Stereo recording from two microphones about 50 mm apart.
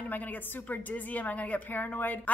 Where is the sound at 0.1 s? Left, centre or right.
Left.